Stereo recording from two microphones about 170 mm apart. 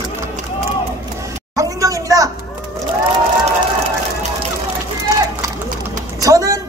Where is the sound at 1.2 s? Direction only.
20° right (ahead or behind).